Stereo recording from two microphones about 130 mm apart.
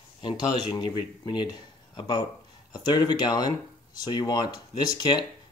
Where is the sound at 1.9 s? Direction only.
35° left (ahead or behind).